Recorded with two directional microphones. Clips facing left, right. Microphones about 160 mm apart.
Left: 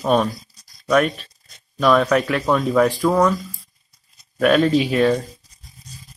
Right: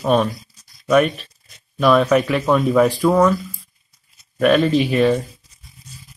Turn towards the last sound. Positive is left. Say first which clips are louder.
# even
turn(degrees=35)  # may be behind; listen again after turning